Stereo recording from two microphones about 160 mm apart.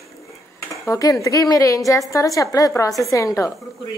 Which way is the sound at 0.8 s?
20° left (ahead or behind).